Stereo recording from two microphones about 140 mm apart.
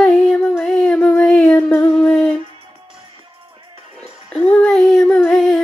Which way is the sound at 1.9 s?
5° left (ahead or behind).